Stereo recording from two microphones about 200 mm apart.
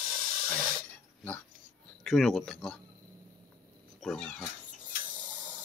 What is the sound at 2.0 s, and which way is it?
Speech, centre (ahead or behind).